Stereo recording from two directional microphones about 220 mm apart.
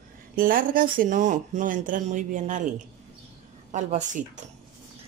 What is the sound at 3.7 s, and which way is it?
Speech, 35° right (ahead or behind).